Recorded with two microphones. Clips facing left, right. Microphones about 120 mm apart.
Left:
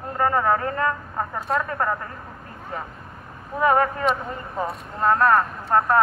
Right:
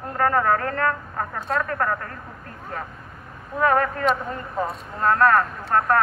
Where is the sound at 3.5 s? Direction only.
20° left (ahead or behind).